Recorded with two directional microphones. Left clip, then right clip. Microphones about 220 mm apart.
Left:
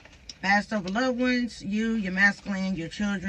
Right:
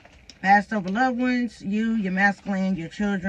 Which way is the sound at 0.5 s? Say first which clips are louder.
Right 6 dB; 30° left (ahead or behind).